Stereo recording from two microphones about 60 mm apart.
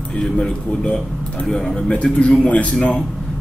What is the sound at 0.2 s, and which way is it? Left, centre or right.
Speech, centre.